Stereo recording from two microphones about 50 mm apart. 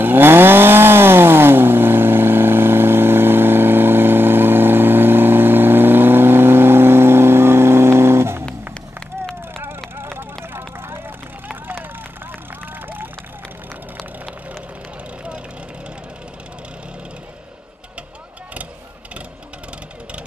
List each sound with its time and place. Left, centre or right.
0.0 s chainsaw: right
9.9 s vehicle: right
11.4 s vehicle: right
12.8 s run: right